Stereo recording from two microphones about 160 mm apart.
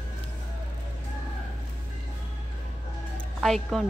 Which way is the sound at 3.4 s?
Centre (ahead or behind).